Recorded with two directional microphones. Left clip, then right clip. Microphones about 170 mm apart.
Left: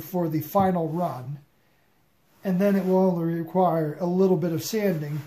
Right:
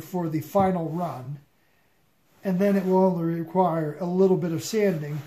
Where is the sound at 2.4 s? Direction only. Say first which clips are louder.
Even; 10° left (ahead or behind).